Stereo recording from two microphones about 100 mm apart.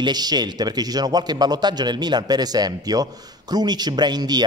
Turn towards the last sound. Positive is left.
turn(degrees=-45)  # may be behind; listen again after turning